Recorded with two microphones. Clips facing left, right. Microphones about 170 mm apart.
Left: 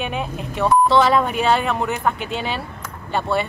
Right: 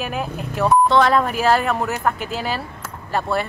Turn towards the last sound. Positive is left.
turn(degrees=0)  # may be behind; listen again after turning